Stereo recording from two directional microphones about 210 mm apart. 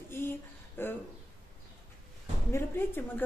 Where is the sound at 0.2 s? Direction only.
10° left (ahead or behind).